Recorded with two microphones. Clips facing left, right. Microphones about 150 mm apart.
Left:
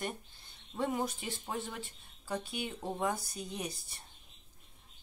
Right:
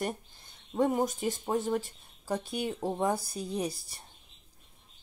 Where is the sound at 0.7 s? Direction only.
45° right (ahead or behind).